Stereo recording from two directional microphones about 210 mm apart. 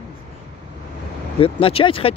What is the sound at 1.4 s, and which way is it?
Speech, 25° left (ahead or behind).